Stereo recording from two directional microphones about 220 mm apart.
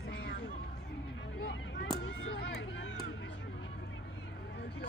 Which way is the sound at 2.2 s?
55° left (ahead or behind).